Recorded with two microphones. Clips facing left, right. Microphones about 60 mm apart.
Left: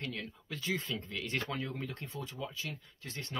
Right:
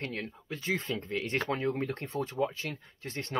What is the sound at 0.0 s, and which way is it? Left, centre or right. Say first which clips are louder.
Speech: right 4 dB; right.